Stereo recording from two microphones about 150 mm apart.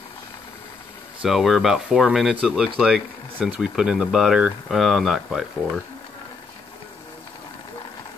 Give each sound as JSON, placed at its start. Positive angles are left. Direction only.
{"t": 1.2, "sound": "speech", "side_deg": 0}